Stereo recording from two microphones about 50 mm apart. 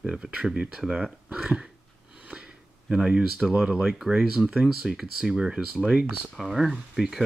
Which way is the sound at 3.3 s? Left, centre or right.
Centre.